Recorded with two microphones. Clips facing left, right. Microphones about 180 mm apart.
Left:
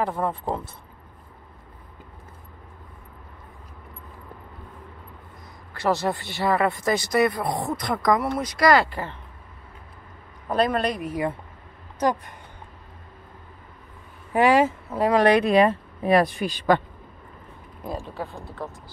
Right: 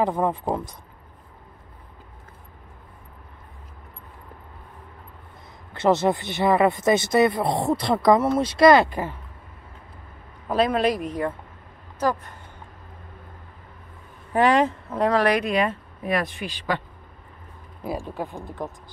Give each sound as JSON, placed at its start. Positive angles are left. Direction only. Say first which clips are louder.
{"t": 0.0, "sound": "speech", "louder": "right 3 dB", "side_deg": -15}
{"t": 5.7, "sound": "speech", "louder": "right 4 dB", "side_deg": -20}
{"t": 10.5, "sound": "speech", "louder": "right 2 dB", "side_deg": 0}
{"t": 12.0, "sound": "speech", "louder": "left 1 dB", "side_deg": 15}
{"t": 14.3, "sound": "speech", "louder": "left 1 dB", "side_deg": 10}
{"t": 15.1, "sound": "speech", "louder": "left 6 dB", "side_deg": 25}
{"t": 17.8, "sound": "speech", "louder": "right 2 dB", "side_deg": -15}